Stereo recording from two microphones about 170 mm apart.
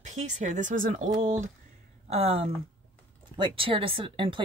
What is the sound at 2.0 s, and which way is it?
Speech, 35° right (ahead or behind).